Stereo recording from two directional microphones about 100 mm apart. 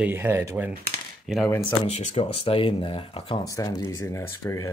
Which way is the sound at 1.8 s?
90° left.